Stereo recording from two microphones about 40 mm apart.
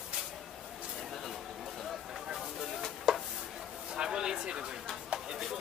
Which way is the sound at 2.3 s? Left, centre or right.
Centre.